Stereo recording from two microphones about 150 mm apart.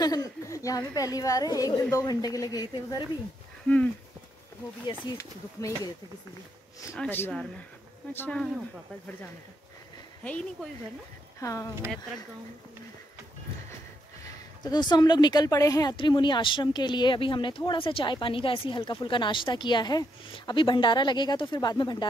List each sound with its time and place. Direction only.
0.0 s a woman's voice: 25° left (ahead or behind)
3.6 s speech: 10° left (ahead or behind)
5.1 s a woman's voice: 20° left (ahead or behind)
7.0 s speech: 10° left (ahead or behind)
10.2 s speech: 10° left (ahead or behind)
11.4 s a woman's voice: 20° left (ahead or behind)
14.6 s speech: 30° left (ahead or behind)